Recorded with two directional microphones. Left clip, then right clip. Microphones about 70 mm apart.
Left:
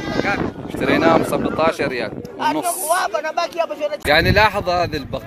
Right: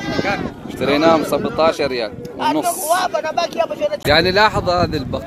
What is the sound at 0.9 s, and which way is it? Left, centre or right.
Speech, left.